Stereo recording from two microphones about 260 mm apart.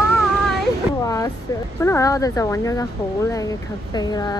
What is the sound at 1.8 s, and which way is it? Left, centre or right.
Speech, centre.